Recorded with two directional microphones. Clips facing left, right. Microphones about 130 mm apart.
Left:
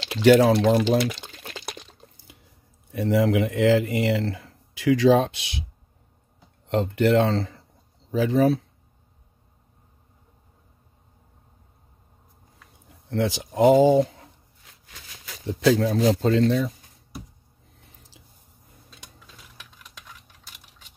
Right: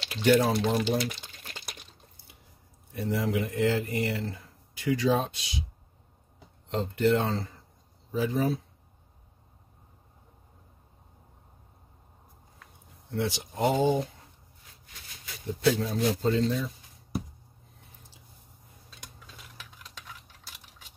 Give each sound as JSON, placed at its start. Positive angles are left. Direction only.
{"t": 0.1, "sound": "a sound", "side_deg": 90}
{"t": 2.9, "sound": "speech", "side_deg": 90}
{"t": 6.7, "sound": "speech", "side_deg": 70}
{"t": 13.7, "sound": "speech", "side_deg": 90}